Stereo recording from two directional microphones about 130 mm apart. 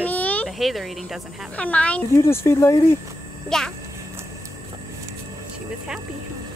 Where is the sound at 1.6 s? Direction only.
10° left (ahead or behind).